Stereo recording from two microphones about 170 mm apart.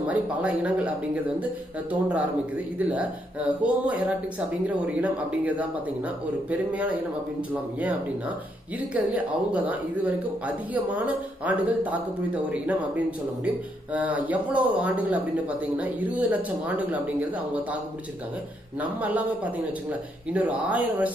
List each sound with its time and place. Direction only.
0.0 s speech: 5° right (ahead or behind)
8.7 s speech: 10° right (ahead or behind)
13.9 s speech: 10° right (ahead or behind)
18.8 s speech: 10° right (ahead or behind)